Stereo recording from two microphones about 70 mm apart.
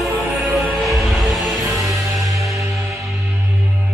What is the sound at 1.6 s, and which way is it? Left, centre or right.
Music, right.